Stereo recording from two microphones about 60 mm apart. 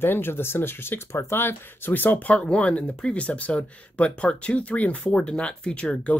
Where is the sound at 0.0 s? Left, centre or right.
Left.